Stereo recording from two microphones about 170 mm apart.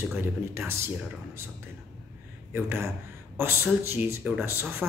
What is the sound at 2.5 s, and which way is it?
Speech, 15° right (ahead or behind).